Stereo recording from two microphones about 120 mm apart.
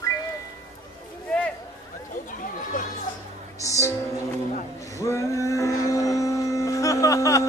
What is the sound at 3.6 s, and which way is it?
Music, 25° left (ahead or behind).